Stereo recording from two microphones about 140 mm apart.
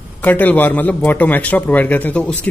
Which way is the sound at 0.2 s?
10° left (ahead or behind).